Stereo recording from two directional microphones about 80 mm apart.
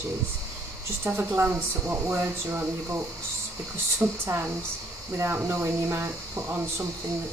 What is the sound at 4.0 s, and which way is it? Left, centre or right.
Speech, right.